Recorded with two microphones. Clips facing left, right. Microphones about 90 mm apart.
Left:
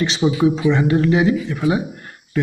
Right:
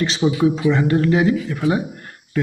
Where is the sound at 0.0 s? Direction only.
5° left (ahead or behind).